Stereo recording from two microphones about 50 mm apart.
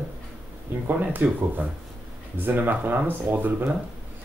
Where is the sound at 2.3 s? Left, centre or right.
Right.